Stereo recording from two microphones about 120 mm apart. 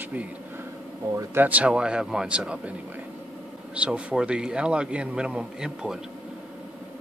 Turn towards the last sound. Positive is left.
turn(degrees=-5)  # may be behind; listen again after turning